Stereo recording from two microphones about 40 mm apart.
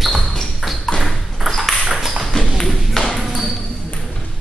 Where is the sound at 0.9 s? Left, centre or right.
Left.